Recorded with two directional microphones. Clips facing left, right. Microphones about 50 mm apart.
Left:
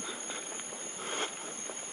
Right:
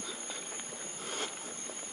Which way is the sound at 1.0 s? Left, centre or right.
Left.